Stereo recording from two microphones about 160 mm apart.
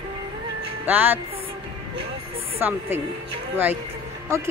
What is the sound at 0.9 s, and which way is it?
Speech, 10° right (ahead or behind).